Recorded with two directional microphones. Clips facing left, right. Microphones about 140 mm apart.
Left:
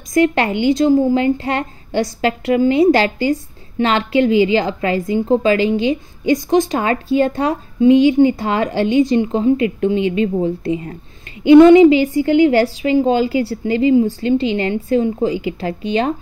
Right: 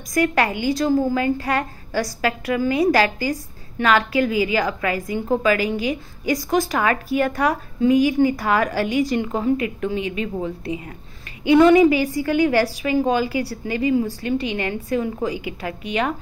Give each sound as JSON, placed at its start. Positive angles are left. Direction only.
{"t": 0.1, "sound": "a woman's voice", "side_deg": 25}